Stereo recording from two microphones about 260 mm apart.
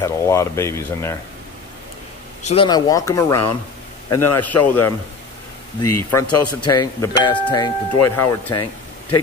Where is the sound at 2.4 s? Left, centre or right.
Centre.